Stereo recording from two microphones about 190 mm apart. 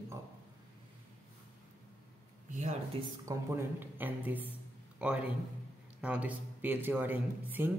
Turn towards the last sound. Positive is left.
turn(degrees=-10)  # may be behind; listen again after turning